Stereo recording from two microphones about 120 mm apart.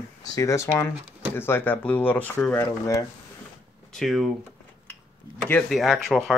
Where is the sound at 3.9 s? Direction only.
Centre (ahead or behind).